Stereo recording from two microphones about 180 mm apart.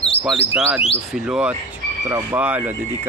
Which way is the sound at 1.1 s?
5° right (ahead or behind).